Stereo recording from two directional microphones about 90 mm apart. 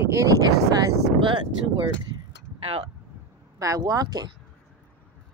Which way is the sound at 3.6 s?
40° right (ahead or behind).